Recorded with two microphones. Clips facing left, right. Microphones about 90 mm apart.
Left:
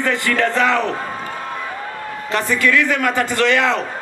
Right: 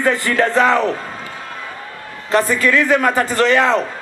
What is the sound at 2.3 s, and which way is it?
A man's voice, 35° right (ahead or behind).